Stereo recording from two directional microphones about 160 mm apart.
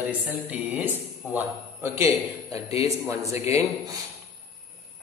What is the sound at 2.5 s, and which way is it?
Speech, 40° left (ahead or behind).